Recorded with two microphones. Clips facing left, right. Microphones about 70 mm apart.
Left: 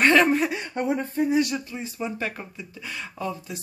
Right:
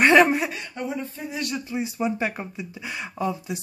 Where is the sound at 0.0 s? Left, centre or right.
Centre.